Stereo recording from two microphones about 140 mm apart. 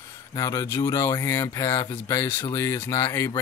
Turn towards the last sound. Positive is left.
turn(degrees=20)  # may be behind; listen again after turning